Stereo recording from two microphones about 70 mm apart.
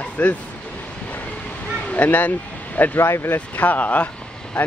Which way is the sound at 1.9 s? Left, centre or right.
Left.